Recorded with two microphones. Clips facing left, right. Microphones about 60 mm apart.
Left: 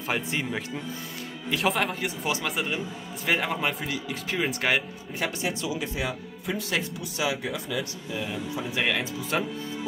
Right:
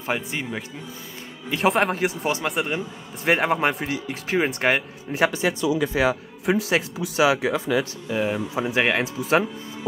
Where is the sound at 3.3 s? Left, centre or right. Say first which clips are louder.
Right 6 dB; right.